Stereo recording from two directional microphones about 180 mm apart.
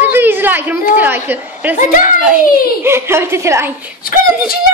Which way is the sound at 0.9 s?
10° right (ahead or behind).